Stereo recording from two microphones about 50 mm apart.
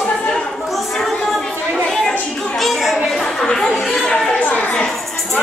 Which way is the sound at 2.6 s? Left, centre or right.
Centre.